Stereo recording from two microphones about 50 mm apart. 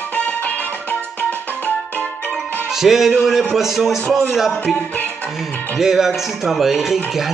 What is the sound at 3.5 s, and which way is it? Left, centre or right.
Speech, centre.